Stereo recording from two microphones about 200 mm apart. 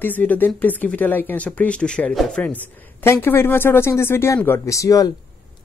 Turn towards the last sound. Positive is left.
turn(degrees=15)  # may be behind; listen again after turning